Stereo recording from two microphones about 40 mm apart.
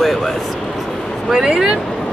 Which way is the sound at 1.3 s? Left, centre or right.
Centre.